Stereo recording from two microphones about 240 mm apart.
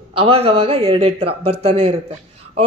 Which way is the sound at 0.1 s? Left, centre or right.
Right.